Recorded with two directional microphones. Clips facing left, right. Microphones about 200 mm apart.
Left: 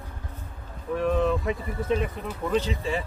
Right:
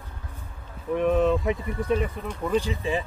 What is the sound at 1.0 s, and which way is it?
Speech, 20° right (ahead or behind).